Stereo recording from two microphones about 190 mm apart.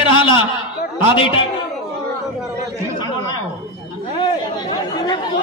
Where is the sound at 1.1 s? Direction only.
30° left (ahead or behind).